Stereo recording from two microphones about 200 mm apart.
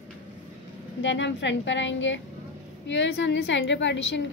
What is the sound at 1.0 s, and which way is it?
A woman's voice, 65° left (ahead or behind).